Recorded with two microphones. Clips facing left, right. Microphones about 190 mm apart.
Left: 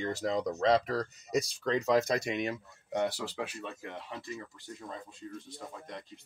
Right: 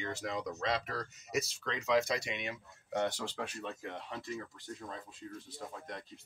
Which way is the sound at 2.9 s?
15° left (ahead or behind).